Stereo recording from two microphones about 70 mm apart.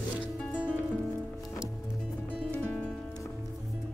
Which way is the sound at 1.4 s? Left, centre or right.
Centre.